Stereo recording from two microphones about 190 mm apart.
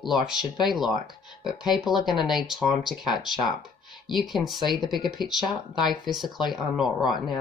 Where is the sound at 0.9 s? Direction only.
25° left (ahead or behind).